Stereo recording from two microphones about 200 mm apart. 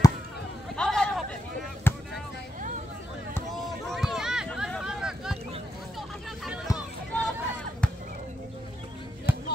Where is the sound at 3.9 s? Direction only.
Centre (ahead or behind).